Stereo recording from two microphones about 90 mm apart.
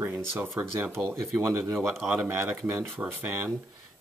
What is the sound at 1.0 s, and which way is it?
Speech, 35° right (ahead or behind).